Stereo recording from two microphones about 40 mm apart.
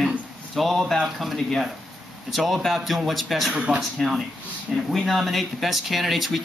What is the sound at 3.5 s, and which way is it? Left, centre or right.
Speech, right.